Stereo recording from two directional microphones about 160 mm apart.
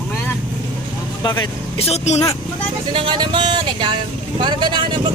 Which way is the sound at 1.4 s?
40° left (ahead or behind).